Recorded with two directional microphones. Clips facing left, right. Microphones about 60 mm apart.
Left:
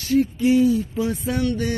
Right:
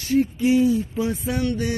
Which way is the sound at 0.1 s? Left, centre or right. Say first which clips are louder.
Left 1 dB; right.